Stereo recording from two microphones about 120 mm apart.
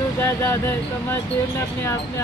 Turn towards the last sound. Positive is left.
turn(degrees=20)  # may be behind; listen again after turning